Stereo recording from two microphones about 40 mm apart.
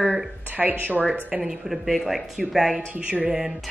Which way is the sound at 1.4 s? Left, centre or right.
Centre.